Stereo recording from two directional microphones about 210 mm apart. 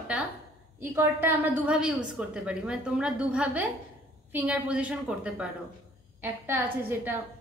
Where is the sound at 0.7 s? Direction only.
10° right (ahead or behind).